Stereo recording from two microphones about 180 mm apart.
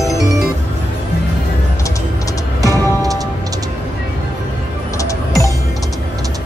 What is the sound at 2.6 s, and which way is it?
Music, 20° right (ahead or behind).